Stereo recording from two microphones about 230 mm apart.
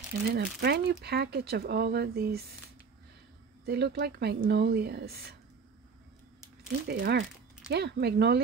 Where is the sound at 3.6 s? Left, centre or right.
Right.